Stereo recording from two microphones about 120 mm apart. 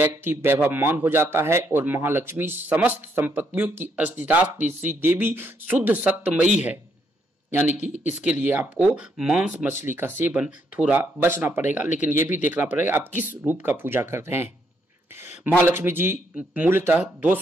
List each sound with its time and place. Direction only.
0.0 s a man's voice: 20° right (ahead or behind)
8.1 s a man's voice: 10° right (ahead or behind)
12.1 s speech: 90° left
12.7 s a man's voice: 20° right (ahead or behind)